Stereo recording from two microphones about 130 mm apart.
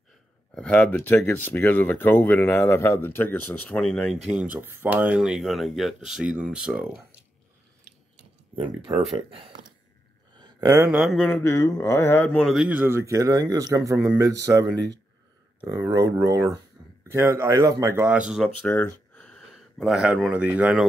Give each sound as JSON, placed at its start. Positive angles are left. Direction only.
{"t": 0.6, "sound": "speech", "side_deg": 10}
{"t": 9.1, "sound": "speech", "side_deg": -40}
{"t": 10.3, "sound": "a sound", "side_deg": -30}
{"t": 10.9, "sound": "a man's voice", "side_deg": 0}
{"t": 11.2, "sound": "speech", "side_deg": 15}
{"t": 12.4, "sound": "a man's voice", "side_deg": 0}
{"t": 12.6, "sound": "speech", "side_deg": -15}
{"t": 16.3, "sound": "speech", "side_deg": -25}
{"t": 18.6, "sound": "speech", "side_deg": 15}